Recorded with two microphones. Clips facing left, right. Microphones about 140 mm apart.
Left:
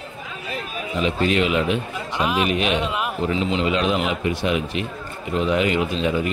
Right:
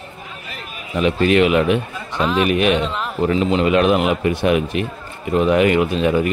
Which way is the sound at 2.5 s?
55° right (ahead or behind).